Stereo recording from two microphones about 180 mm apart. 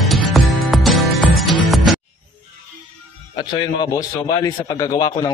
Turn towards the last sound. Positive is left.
turn(degrees=20)  # may be behind; listen again after turning